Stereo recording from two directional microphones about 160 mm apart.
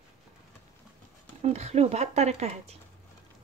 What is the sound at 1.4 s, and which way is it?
Speech, 40° right (ahead or behind).